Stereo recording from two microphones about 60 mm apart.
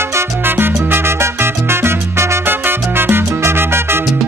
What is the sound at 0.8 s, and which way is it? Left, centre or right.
Music, right.